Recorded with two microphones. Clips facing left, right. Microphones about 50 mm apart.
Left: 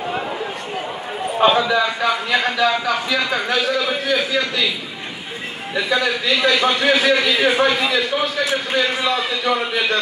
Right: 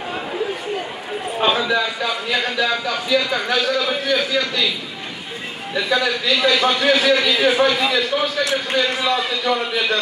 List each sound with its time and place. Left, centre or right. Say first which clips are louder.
2.0 s a man's voice: left 3 dB; centre
5.8 s a man's voice: even; centre